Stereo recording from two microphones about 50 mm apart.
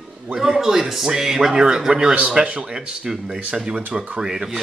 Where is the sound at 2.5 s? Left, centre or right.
Right.